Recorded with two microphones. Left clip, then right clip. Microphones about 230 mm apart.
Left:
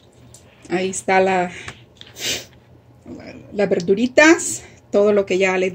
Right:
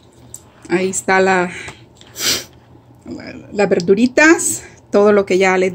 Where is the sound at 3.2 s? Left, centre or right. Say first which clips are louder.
Right 4 dB; centre.